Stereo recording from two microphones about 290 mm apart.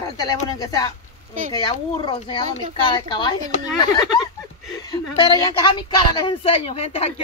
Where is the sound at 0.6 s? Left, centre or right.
Centre.